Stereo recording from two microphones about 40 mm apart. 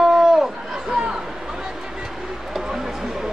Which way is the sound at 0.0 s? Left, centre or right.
Centre.